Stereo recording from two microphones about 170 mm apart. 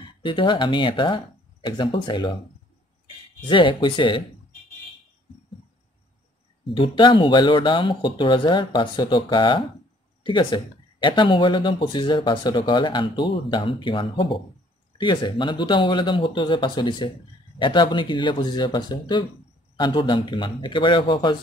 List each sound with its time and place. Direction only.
0.2 s speech: 30° left (ahead or behind)
3.3 s speech: 30° left (ahead or behind)
6.7 s speech: 30° left (ahead or behind)